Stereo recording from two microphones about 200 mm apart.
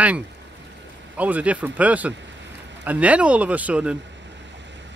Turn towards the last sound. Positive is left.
turn(degrees=-5)  # may be behind; listen again after turning